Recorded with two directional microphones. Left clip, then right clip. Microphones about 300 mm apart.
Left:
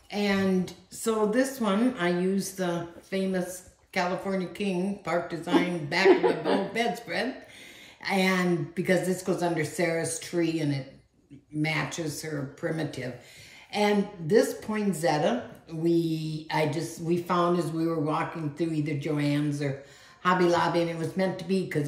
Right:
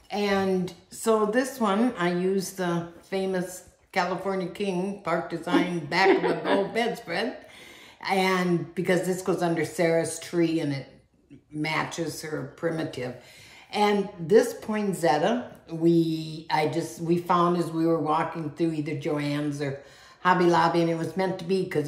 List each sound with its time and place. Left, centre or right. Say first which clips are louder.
0.1 s speech: right 2 dB; centre